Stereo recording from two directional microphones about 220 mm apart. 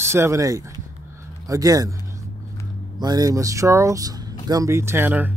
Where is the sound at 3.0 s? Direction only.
15° right (ahead or behind).